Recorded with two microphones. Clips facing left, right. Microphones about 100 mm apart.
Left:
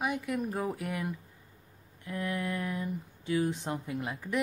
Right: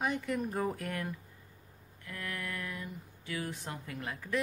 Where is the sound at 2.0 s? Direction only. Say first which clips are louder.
Left 7 dB; 20° left (ahead or behind).